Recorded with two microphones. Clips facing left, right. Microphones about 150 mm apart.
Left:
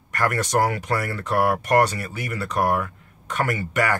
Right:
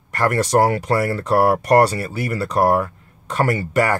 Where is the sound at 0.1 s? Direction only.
30° right (ahead or behind).